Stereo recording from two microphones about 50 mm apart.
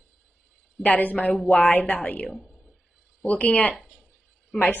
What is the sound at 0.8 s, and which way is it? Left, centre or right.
A woman's voice, left.